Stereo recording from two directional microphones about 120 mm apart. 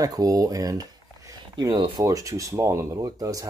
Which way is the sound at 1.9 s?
30° right (ahead or behind).